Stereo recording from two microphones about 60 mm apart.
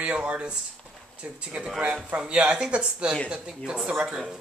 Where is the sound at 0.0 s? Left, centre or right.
Right.